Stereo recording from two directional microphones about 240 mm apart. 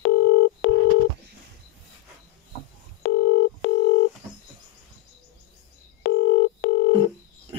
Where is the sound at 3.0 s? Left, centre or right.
Left.